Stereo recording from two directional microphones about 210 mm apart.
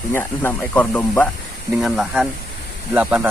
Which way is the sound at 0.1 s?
10° left (ahead or behind).